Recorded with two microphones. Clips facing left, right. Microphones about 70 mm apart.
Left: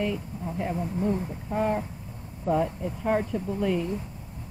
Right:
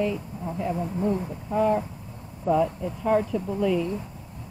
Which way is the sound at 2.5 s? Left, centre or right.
Right.